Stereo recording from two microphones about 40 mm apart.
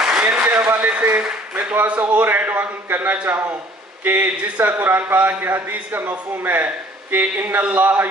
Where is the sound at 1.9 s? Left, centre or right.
Right.